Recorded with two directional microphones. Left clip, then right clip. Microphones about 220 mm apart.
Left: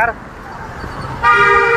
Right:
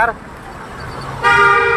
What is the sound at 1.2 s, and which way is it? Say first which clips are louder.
Toot: left 1 dB; 40° right (ahead or behind).